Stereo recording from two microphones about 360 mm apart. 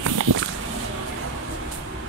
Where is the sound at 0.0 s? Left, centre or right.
Right.